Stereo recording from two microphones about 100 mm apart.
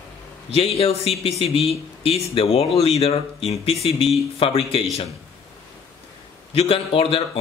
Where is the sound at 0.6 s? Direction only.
80° left.